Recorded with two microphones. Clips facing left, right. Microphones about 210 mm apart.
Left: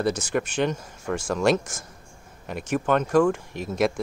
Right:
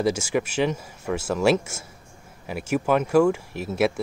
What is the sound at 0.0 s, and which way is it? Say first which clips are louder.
Speech: right 2 dB; 10° right (ahead or behind).